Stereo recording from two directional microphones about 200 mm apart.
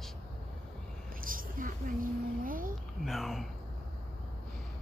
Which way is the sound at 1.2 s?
45° right (ahead or behind).